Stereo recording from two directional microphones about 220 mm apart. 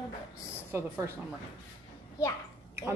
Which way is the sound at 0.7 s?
10° right (ahead or behind).